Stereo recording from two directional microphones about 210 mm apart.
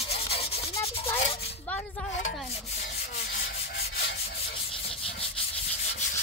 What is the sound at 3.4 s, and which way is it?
Rub, 50° left (ahead or behind).